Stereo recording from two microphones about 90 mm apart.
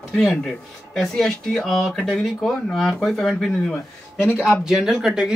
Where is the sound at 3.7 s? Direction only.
25° left (ahead or behind).